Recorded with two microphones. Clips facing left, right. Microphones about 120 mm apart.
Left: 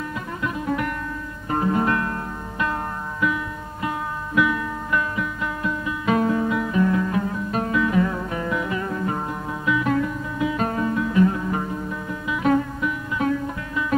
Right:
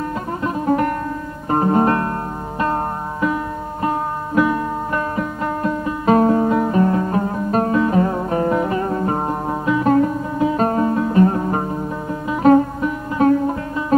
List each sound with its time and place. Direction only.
0.4 s music: 40° right (ahead or behind)